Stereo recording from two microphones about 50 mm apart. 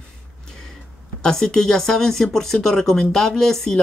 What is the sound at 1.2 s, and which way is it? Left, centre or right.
Speech, centre.